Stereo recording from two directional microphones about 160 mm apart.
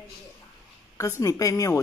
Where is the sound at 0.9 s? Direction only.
20° left (ahead or behind).